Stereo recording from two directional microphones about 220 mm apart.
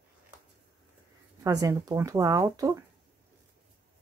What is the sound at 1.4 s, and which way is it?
Speech, 15° right (ahead or behind).